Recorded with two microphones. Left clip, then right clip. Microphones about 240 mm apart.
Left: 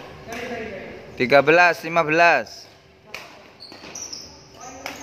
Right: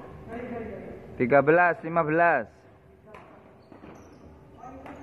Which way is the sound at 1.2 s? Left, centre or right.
Left.